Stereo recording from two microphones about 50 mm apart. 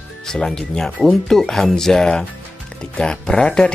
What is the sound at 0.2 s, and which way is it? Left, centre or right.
Speech, centre.